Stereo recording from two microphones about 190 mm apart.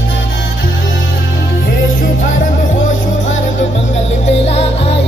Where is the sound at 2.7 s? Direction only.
85° left.